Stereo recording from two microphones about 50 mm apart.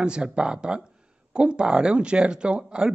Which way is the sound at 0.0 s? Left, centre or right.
Centre.